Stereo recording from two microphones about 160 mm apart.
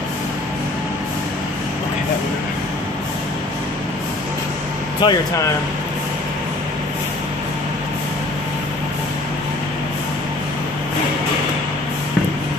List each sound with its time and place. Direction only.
5.0 s speech: 25° left (ahead or behind)